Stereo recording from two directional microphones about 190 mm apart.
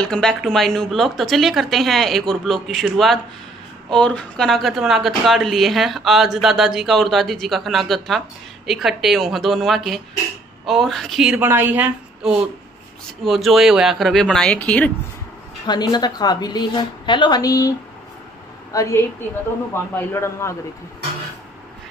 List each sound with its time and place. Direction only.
0.0 s speech: 5° left (ahead or behind)
15.6 s a woman's voice: 20° left (ahead or behind)